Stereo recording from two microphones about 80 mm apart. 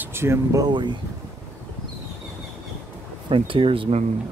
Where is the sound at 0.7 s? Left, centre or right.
Right.